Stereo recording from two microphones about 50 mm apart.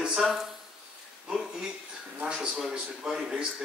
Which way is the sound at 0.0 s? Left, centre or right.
Centre.